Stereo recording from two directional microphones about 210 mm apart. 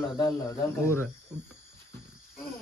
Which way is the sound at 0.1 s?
15° left (ahead or behind).